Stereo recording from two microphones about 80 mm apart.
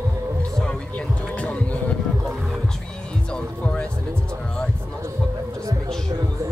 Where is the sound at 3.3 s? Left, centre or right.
Centre.